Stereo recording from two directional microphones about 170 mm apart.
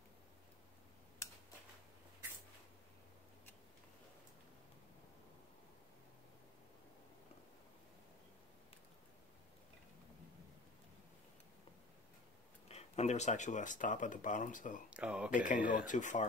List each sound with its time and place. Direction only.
12.6 s speech: 40° left (ahead or behind)
14.9 s speech: 5° right (ahead or behind)
15.3 s speech: 50° left (ahead or behind)